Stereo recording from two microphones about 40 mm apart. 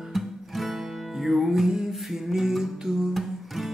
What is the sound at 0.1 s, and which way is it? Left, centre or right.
Music, centre.